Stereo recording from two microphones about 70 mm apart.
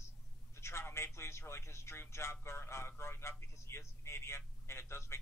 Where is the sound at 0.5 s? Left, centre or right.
Left.